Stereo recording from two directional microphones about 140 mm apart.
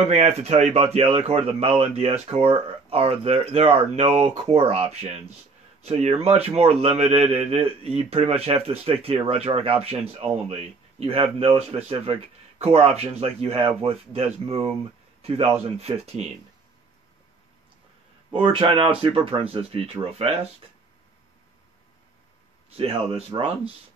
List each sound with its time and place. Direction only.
0.4 s speech: 55° right (ahead or behind)
18.3 s speech: 40° right (ahead or behind)
22.8 s speech: 40° right (ahead or behind)